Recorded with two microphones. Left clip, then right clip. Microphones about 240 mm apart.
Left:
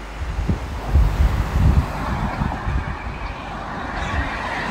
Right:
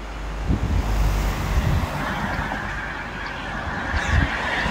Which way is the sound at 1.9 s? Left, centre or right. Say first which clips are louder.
Even; right.